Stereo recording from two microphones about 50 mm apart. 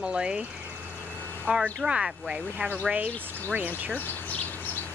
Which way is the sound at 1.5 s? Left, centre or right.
Right.